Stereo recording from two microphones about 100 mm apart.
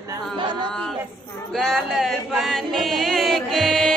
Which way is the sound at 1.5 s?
Centre (ahead or behind).